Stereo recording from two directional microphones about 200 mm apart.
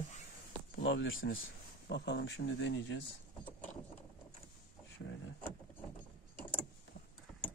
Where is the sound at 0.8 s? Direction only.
70° left (ahead or behind).